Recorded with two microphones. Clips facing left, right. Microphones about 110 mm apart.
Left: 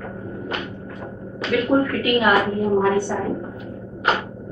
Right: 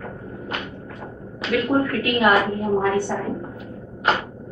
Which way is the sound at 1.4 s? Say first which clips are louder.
Left 2 dB; centre (ahead or behind).